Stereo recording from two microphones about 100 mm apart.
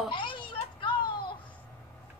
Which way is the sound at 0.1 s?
55° left (ahead or behind).